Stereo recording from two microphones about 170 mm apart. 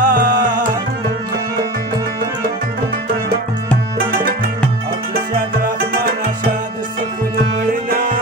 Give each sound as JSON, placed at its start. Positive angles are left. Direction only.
{"t": 0.0, "sound": "music", "side_deg": -50}
{"t": 4.1, "sound": "music", "side_deg": -55}
{"t": 7.9, "sound": "music", "side_deg": -60}